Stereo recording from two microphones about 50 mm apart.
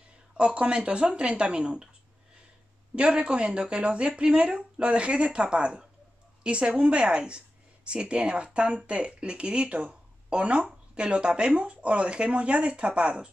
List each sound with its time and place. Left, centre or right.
0.4 s speech: right
3.0 s speech: right